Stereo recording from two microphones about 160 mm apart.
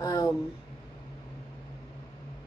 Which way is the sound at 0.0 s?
25° left (ahead or behind).